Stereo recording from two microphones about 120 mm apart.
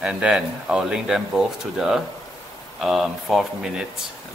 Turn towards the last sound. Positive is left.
turn(degrees=-5)  # may be behind; listen again after turning